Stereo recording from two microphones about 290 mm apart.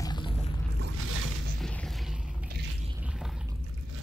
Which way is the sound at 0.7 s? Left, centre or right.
Right.